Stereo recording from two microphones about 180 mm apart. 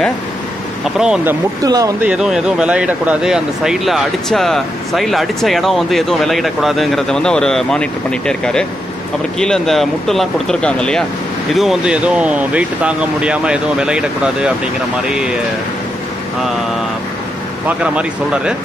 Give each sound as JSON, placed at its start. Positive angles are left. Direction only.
{"t": 0.9, "sound": "speech", "side_deg": -5}
{"t": 1.6, "sound": "speech", "side_deg": -20}
{"t": 2.0, "sound": "speech", "side_deg": -5}
{"t": 17.6, "sound": "speech", "side_deg": -5}